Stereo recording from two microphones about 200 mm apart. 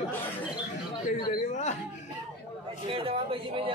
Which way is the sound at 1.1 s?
35° left (ahead or behind).